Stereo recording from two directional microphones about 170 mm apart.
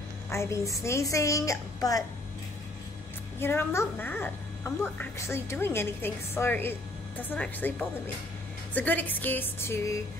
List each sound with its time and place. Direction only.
0.3 s a woman's voice: 15° left (ahead or behind)
3.3 s a woman's voice: 15° left (ahead or behind)
8.7 s a woman's voice: 10° left (ahead or behind)